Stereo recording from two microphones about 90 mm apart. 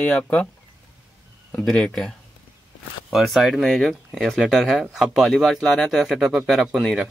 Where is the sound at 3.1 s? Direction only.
Centre (ahead or behind).